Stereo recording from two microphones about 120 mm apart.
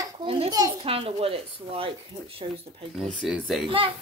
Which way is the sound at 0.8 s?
50° right (ahead or behind).